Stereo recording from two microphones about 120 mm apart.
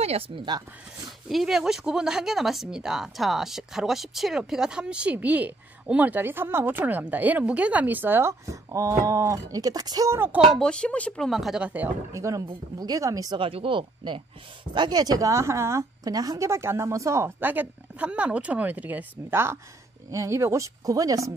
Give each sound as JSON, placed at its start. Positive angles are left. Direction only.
{"t": 0.0, "sound": "a sound", "side_deg": -60}
{"t": 1.3, "sound": "speech", "side_deg": 0}
{"t": 10.5, "sound": "speech", "side_deg": 5}
{"t": 12.1, "sound": "speech", "side_deg": -25}
{"t": 13.4, "sound": "a woman's voice", "side_deg": -50}